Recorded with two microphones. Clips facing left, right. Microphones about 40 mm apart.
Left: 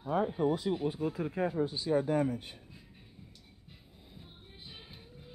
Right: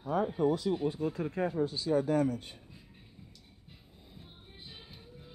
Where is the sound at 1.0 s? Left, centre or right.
Centre.